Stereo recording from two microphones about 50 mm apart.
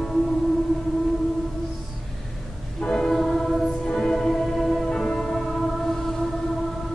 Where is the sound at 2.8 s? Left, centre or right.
Centre.